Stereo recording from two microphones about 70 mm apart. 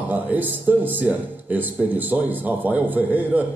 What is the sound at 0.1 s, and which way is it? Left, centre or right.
Speech, right.